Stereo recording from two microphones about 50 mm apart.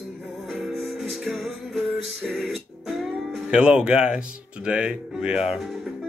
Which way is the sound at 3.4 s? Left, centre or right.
Centre.